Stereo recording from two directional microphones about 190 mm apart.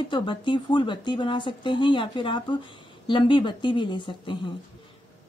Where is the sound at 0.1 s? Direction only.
25° left (ahead or behind).